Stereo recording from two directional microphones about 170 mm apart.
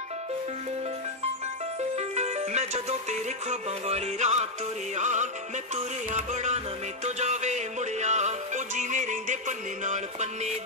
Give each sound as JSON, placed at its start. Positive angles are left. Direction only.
{"t": 1.8, "sound": "music", "side_deg": -40}